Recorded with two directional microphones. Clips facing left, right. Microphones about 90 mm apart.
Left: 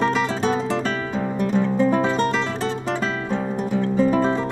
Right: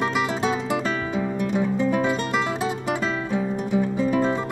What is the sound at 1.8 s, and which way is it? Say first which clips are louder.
Music: left 4 dB; 40° left (ahead or behind).